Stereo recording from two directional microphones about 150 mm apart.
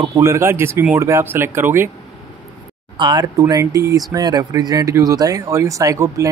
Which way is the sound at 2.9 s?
30° right (ahead or behind).